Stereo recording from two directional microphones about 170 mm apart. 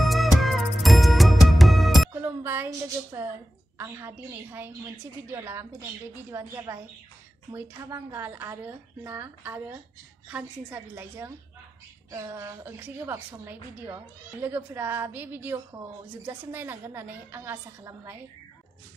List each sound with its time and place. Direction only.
0.0 s music: centre (ahead or behind)
2.2 s a sound: 15° right (ahead or behind)
3.7 s a woman's voice: 15° right (ahead or behind)